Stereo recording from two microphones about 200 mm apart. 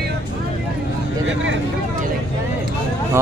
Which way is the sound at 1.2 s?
70° right (ahead or behind).